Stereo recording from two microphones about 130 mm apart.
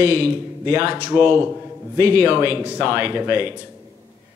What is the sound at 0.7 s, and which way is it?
Speech, 15° right (ahead or behind).